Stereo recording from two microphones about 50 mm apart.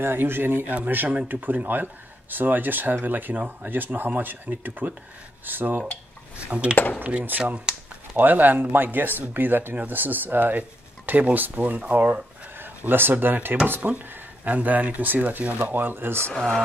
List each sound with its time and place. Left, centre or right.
0.0 s speech: right
6.7 s speech: left
7.0 s speech: right
7.2 s speech: right
7.5 s a sound: centre
8.2 s speech: right
12.5 s speech: right
15.8 s speech: right
16.3 s speech: centre